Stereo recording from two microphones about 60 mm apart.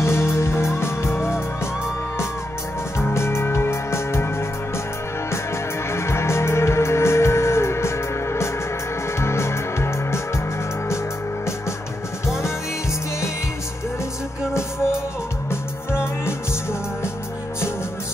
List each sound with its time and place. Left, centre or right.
0.0 s music: left
3.0 s music: left
15.5 s music: left